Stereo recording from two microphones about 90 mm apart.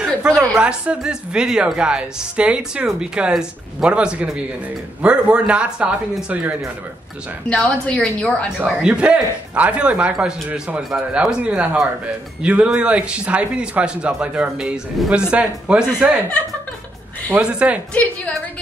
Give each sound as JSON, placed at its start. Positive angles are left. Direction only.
{"t": 0.0, "sound": "speech", "side_deg": -5}
{"t": 7.4, "sound": "a woman's voice", "side_deg": 10}
{"t": 8.5, "sound": "speech", "side_deg": -10}
{"t": 17.4, "sound": "speech", "side_deg": -15}